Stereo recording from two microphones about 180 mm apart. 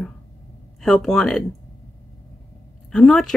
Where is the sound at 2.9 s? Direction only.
5° left (ahead or behind).